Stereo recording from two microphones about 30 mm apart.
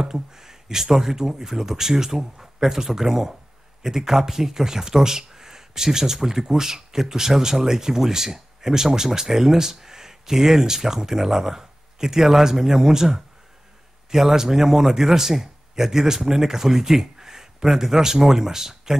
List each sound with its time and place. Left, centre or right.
0.0 s speech: centre